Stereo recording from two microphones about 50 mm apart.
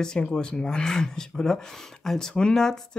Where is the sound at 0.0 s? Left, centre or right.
Centre.